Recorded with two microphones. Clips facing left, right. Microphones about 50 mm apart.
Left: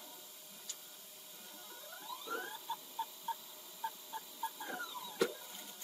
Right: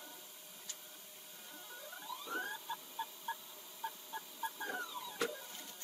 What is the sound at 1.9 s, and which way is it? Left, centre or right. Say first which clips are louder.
Fowl: left 1 dB; centre.